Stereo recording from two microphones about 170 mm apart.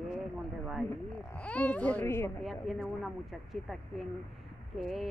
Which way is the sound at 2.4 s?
Centre (ahead or behind).